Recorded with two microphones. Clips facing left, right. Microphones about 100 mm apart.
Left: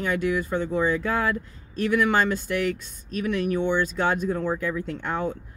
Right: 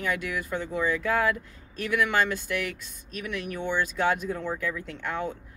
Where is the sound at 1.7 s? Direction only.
25° left (ahead or behind).